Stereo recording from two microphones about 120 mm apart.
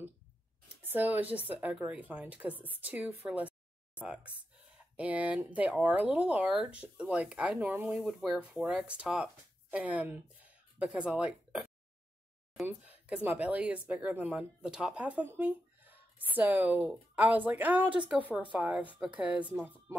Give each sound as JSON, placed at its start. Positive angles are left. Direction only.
{"t": 0.8, "sound": "speech", "side_deg": -15}
{"t": 12.6, "sound": "speech", "side_deg": -15}